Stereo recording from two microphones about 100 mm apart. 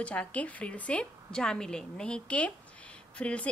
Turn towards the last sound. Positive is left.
turn(degrees=10)  # may be behind; listen again after turning